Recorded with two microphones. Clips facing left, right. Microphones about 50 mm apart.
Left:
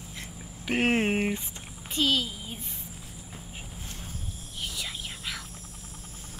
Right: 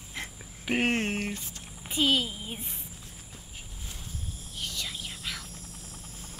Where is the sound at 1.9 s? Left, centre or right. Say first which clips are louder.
Right 1 dB; centre.